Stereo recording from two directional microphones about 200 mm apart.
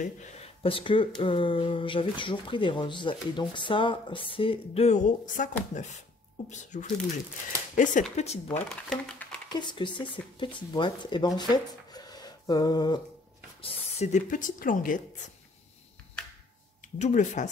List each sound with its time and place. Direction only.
0.0 s speech: 35° left (ahead or behind)
8.5 s speech: 5° left (ahead or behind)
9.5 s speech: 20° left (ahead or behind)
13.6 s speech: 35° left (ahead or behind)
17.0 s speech: 40° left (ahead or behind)